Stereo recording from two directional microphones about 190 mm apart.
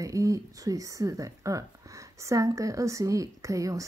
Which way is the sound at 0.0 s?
15° right (ahead or behind).